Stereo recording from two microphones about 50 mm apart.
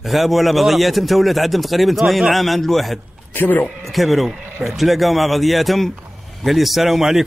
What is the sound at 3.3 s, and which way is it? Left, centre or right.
Speech, left.